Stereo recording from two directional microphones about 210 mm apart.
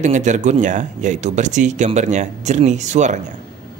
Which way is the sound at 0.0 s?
35° right (ahead or behind).